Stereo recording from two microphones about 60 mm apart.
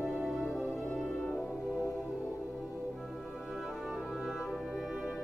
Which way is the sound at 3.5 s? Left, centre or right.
Centre.